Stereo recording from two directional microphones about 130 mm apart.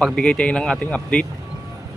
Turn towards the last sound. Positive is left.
turn(degrees=10)  # may be behind; listen again after turning